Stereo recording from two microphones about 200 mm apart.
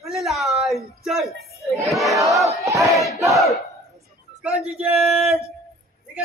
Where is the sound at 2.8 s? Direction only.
15° right (ahead or behind).